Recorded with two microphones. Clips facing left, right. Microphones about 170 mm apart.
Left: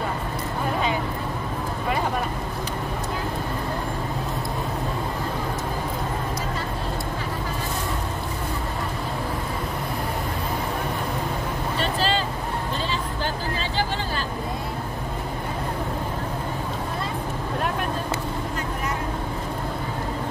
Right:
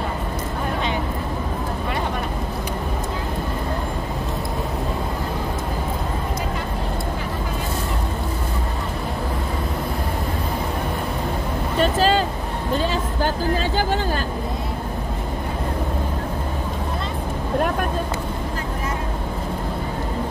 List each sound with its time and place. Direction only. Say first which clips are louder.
11.8 s vehicle: right 7 dB; 45° right (ahead or behind)